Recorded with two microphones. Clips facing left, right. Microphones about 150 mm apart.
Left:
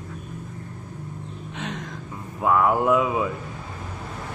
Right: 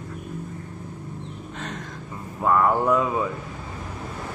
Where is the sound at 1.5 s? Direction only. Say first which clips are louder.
Left 3 dB; centre (ahead or behind).